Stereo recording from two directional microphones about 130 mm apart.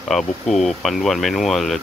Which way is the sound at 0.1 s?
5° left (ahead or behind).